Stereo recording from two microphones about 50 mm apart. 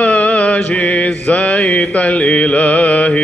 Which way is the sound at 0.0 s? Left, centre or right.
Left.